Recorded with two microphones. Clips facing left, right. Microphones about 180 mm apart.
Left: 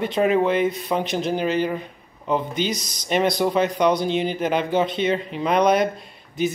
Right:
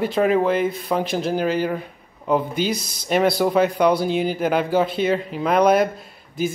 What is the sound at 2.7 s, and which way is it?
Speech, 55° right (ahead or behind).